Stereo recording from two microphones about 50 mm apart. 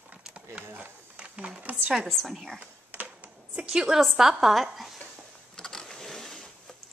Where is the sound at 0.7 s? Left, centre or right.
Right.